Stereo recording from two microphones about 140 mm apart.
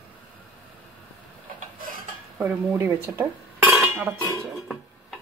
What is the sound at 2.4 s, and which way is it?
Speech, 15° right (ahead or behind).